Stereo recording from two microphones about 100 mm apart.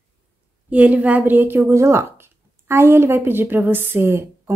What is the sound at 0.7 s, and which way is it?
Speech, 15° right (ahead or behind).